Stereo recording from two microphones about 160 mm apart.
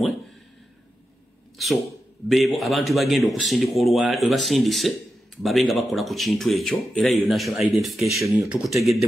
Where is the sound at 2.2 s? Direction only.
Centre (ahead or behind).